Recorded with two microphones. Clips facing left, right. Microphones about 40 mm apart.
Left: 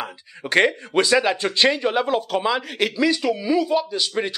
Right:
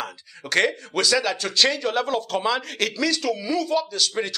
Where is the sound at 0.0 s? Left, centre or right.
Centre.